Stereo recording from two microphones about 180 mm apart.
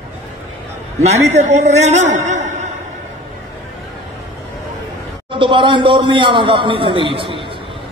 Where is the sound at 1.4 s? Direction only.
40° right (ahead or behind).